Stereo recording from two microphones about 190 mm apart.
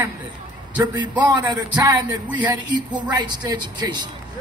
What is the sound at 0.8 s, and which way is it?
Speech, 25° right (ahead or behind).